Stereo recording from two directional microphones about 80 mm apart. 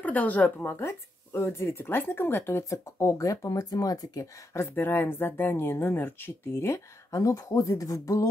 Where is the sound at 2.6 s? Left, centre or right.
Left.